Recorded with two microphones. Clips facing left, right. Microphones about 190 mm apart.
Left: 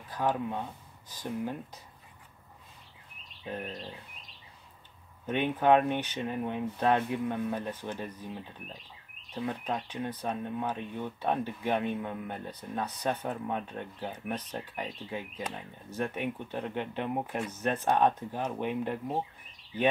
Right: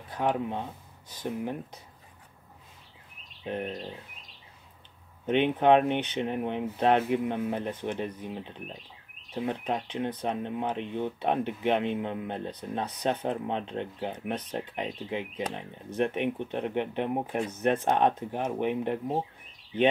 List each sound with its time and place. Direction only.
0.1 s speech: 20° right (ahead or behind)
3.4 s speech: 20° right (ahead or behind)
5.2 s speech: 25° right (ahead or behind)